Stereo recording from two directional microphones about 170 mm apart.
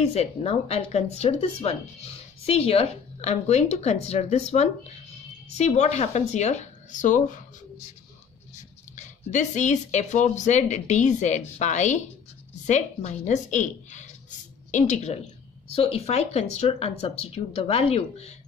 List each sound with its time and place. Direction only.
0.0 s speech: 35° left (ahead or behind)
8.9 s speech: 45° left (ahead or behind)